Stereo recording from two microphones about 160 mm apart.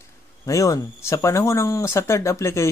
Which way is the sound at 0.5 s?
20° left (ahead or behind).